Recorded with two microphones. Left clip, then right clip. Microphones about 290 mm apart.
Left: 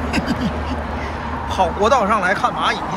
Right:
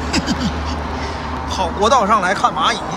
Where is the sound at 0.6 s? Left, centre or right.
Left.